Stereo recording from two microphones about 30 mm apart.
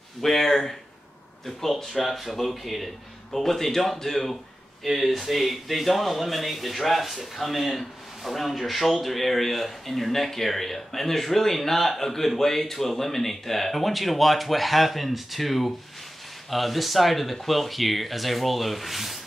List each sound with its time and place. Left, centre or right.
0.2 s speech: centre
1.8 s speech: centre
4.8 s speech: centre